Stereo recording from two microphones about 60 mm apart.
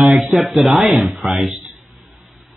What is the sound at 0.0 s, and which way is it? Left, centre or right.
Speech, centre.